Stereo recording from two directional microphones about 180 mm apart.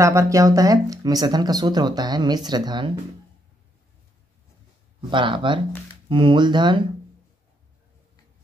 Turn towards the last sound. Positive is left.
turn(degrees=-25)  # may be behind; listen again after turning